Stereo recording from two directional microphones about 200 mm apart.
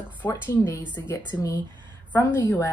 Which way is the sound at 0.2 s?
10° left (ahead or behind).